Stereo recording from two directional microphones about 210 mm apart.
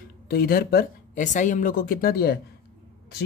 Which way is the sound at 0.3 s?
45° left (ahead or behind).